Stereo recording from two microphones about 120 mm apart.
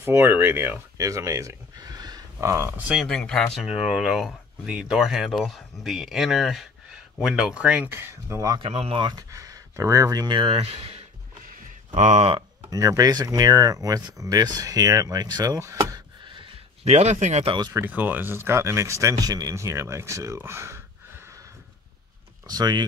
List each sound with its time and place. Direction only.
0.0 s speech: 15° right (ahead or behind); by 2.5 s 35° right (ahead or behind)
3.1 s speech: 5° left (ahead or behind); by 8.5 s 25° right (ahead or behind)
8.5 s speech: 55° right (ahead or behind)
9.0 s speech: 30° right (ahead or behind)
10.5 s speech: 55° right (ahead or behind)
11.9 s speech: 70° right (ahead or behind)
12.6 s speech: 25° right (ahead or behind)
16.8 s speech: 65° right (ahead or behind)
17.5 s speech: 35° right (ahead or behind)
17.7 s speech: 15° right (ahead or behind)
22.5 s speech: 35° right (ahead or behind)